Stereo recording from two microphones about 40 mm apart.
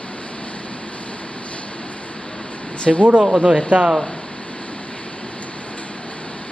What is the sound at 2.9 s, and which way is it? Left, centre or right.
Speech, centre.